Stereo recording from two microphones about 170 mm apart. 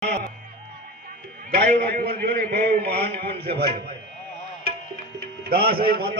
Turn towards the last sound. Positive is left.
turn(degrees=-65)  # may be behind; listen again after turning